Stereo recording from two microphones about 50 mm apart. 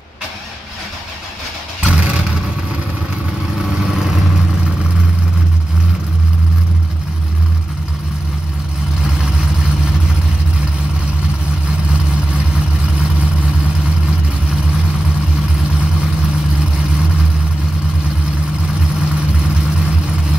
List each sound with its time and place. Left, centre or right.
1.9 s vehicle: right